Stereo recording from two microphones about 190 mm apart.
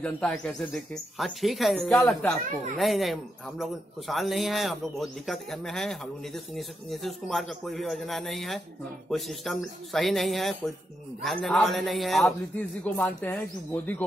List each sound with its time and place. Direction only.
0.0 s a man's voice: 5° left (ahead or behind)